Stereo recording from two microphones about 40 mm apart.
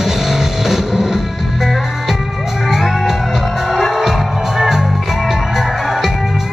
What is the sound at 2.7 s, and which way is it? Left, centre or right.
Music, centre.